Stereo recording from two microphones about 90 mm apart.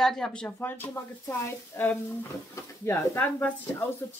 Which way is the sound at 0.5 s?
25° left (ahead or behind).